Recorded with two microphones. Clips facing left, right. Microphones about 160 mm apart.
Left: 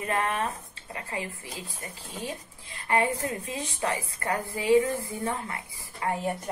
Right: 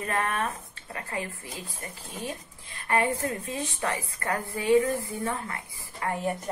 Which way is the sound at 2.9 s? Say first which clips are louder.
Even; 20° left (ahead or behind).